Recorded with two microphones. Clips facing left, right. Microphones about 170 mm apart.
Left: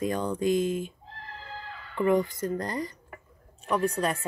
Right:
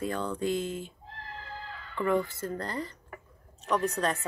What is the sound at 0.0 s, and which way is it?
Speech, 15° left (ahead or behind).